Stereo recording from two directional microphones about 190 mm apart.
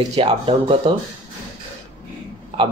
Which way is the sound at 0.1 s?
30° right (ahead or behind).